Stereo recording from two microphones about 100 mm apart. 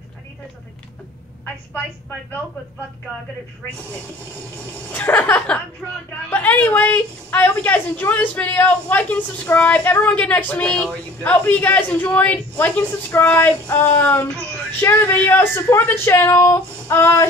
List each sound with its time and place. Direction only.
4.9 s a woman's voice: 15° left (ahead or behind)